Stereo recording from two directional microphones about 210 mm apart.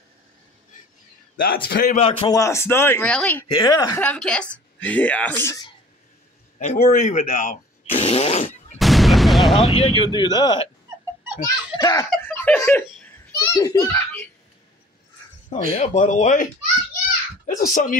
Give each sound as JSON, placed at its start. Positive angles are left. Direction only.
{"t": 1.4, "sound": "a man's voice", "side_deg": 45}
{"t": 2.0, "sound": "a man's voice", "side_deg": 25}
{"t": 3.5, "sound": "a man's voice", "side_deg": 20}
{"t": 4.0, "sound": "a woman's voice", "side_deg": 5}
{"t": 6.6, "sound": "speech", "side_deg": 35}
{"t": 8.7, "sound": "gunshot", "side_deg": 0}
{"t": 9.9, "sound": "a man's voice", "side_deg": 20}
{"t": 12.2, "sound": "giggle", "side_deg": 10}
{"t": 15.7, "sound": "speech", "side_deg": 30}
{"t": 17.5, "sound": "speech", "side_deg": 40}